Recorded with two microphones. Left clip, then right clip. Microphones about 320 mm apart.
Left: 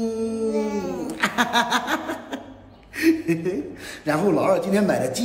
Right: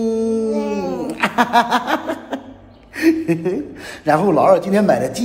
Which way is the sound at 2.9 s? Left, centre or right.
Centre.